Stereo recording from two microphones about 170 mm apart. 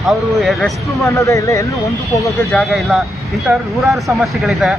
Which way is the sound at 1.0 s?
20° left (ahead or behind).